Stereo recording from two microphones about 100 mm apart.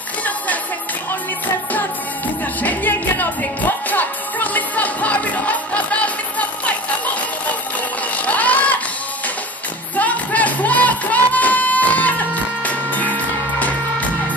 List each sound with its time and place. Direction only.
2.6 s music: 15° left (ahead or behind)
8.3 s a sound: 15° left (ahead or behind)
9.9 s music: 15° left (ahead or behind)